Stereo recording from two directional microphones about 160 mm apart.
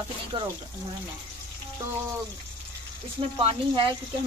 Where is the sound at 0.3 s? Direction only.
30° right (ahead or behind).